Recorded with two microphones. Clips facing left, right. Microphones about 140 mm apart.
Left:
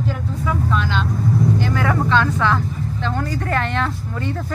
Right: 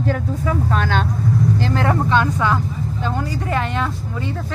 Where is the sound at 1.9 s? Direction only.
15° right (ahead or behind).